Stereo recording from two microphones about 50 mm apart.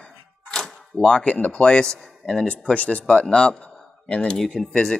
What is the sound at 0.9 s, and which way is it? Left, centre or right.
Speech, centre.